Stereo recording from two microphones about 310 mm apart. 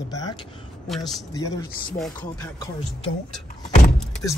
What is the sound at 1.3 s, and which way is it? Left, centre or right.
Speech, centre.